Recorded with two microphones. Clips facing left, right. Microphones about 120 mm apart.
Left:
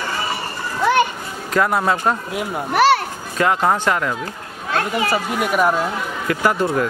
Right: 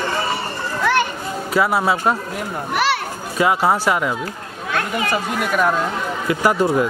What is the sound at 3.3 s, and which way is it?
Speech, 10° right (ahead or behind).